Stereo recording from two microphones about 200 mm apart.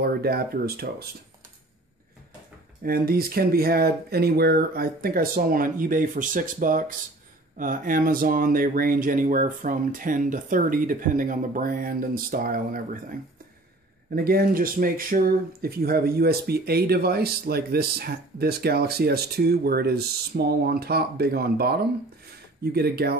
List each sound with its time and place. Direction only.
0.0 s speech: 50° right (ahead or behind)
2.8 s speech: 45° right (ahead or behind)